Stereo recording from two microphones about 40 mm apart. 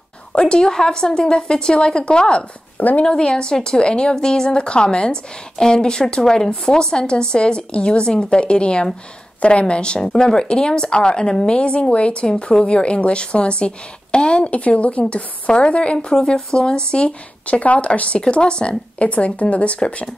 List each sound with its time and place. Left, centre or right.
0.3 s a woman's voice: left